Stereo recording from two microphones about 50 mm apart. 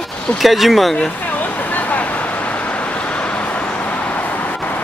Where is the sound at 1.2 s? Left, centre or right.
Left.